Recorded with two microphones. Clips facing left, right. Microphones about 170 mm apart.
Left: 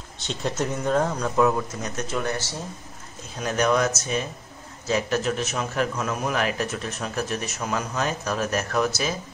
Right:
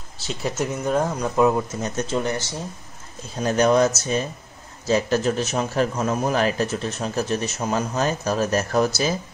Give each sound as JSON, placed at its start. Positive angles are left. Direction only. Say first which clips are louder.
{"t": 0.2, "sound": "speech", "louder": "right 1 dB", "side_deg": -5}
{"t": 1.3, "sound": "speech", "louder": "right 3 dB", "side_deg": -20}
{"t": 1.8, "sound": "speech", "louder": "right 4 dB", "side_deg": -30}
{"t": 3.3, "sound": "a man's voice", "louder": "right 4 dB", "side_deg": -35}